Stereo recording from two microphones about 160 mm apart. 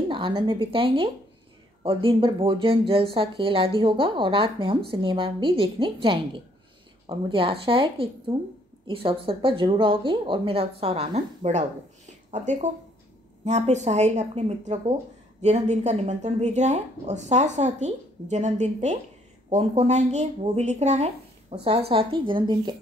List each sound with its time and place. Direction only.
0.1 s a woman's voice: 30° right (ahead or behind)